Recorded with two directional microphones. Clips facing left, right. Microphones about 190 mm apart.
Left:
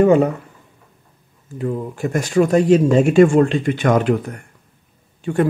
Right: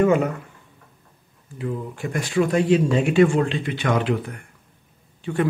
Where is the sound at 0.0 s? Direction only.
35° left (ahead or behind).